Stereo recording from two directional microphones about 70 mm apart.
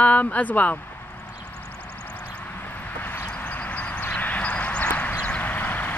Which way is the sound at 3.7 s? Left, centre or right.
Centre.